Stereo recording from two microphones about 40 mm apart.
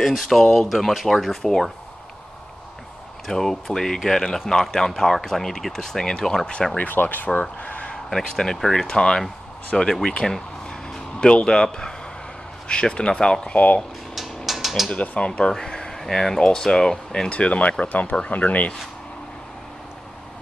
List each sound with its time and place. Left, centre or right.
0.0 s speech: centre
3.3 s speech: centre
6.8 s speech: left
7.6 s a sound: left
8.2 s speech: centre
9.7 s speech: centre
10.0 s speech: left
14.1 s a sound: centre
14.9 s speech: left
15.5 s speech: centre
17.3 s speech: left
17.8 s speech: left
18.3 s speech: left